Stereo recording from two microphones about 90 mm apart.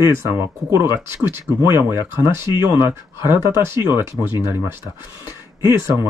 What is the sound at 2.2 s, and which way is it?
Speech, 35° right (ahead or behind).